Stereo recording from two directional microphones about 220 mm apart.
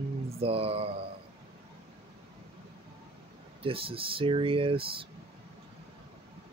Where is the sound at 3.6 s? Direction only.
25° right (ahead or behind).